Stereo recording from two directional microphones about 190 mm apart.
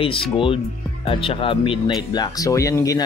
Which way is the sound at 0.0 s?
25° left (ahead or behind).